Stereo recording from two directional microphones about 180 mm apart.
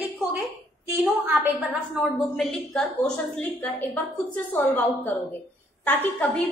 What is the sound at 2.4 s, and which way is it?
A woman's voice, 5° left (ahead or behind).